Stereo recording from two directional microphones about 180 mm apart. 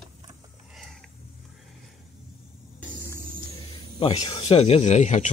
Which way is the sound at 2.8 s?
10° left (ahead or behind).